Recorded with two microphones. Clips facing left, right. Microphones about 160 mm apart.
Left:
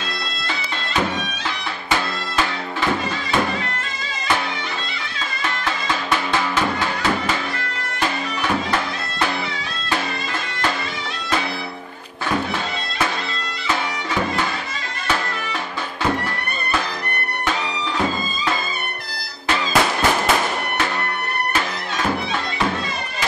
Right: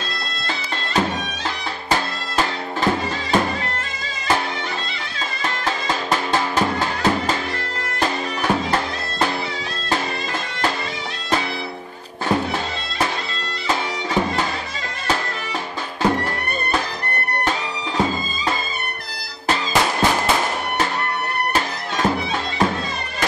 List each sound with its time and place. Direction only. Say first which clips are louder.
1.9 s music: even; 40° right (ahead or behind)
6.0 s music: right 1 dB; 40° right (ahead or behind)